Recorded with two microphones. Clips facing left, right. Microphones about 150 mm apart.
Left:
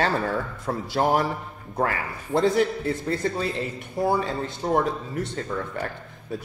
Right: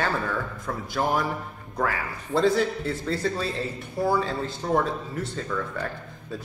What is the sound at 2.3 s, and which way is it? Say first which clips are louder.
Speech: even; 20° left (ahead or behind).